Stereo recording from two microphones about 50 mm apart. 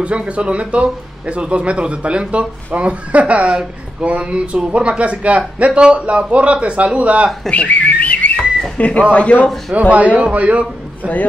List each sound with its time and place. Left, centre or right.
0.0 s speech: right
7.5 s whistling: left
8.7 s a man's voice: left
9.8 s speech: right